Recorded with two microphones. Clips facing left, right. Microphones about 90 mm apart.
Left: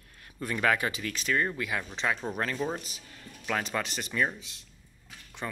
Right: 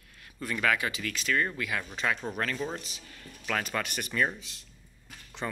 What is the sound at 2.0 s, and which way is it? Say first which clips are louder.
Speech: even; 5° left (ahead or behind).